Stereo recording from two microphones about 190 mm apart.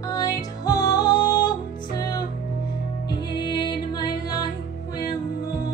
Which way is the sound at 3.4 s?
20° left (ahead or behind).